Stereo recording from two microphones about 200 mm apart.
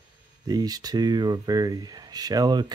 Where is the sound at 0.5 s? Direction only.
20° right (ahead or behind).